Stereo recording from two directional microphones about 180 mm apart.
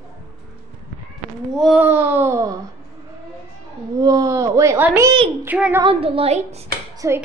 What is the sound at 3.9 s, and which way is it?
A woman's voice, 20° right (ahead or behind).